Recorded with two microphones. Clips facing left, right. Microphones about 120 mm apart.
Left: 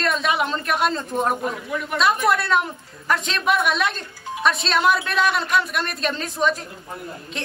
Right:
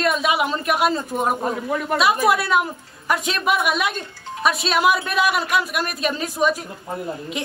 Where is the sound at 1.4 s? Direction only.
40° right (ahead or behind).